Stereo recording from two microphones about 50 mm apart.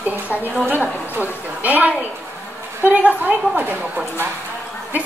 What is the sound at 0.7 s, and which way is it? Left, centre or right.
A woman's voice, right.